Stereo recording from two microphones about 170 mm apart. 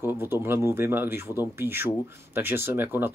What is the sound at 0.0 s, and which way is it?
Speech, 15° right (ahead or behind).